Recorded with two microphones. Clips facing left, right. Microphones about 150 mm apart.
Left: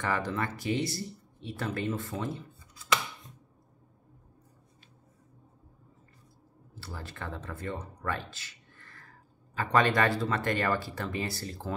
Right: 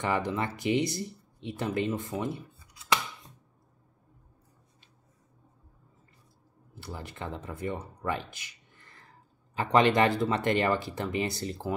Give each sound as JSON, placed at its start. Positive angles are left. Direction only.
{"t": 0.0, "sound": "speech", "side_deg": -20}
{"t": 6.7, "sound": "speech", "side_deg": -15}